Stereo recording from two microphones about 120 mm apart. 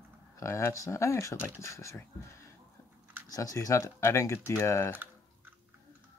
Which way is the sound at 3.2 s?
30° left (ahead or behind).